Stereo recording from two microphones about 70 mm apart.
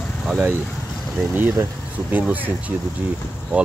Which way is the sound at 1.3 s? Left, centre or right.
Right.